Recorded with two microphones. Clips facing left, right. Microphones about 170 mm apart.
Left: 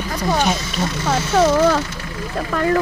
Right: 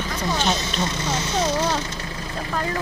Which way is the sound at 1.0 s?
65° left (ahead or behind).